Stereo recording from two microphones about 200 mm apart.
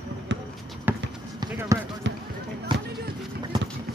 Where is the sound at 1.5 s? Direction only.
10° right (ahead or behind).